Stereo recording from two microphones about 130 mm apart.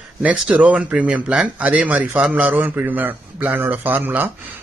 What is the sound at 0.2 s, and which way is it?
Speech, 10° right (ahead or behind).